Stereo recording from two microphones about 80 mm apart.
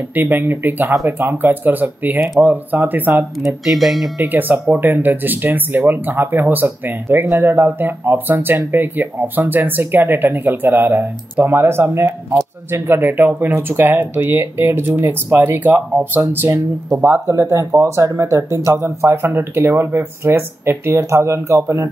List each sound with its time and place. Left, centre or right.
0.1 s speech: right
3.6 s speech: centre
4.2 s speech: right